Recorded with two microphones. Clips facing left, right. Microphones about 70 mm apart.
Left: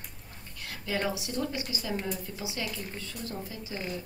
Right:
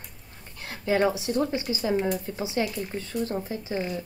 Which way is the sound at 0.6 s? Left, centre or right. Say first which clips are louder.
Right 8 dB; right.